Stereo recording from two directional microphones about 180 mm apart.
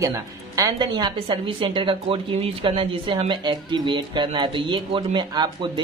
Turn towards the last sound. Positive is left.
turn(degrees=-25)  # may be behind; listen again after turning